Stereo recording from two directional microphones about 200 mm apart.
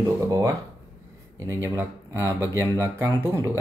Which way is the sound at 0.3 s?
15° right (ahead or behind).